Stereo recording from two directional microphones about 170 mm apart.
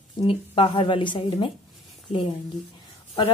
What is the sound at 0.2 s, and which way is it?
A woman's voice, 30° left (ahead or behind).